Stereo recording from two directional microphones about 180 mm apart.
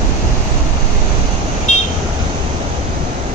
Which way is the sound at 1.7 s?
45° left (ahead or behind).